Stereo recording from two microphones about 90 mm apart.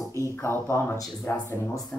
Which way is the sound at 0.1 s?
30° left (ahead or behind).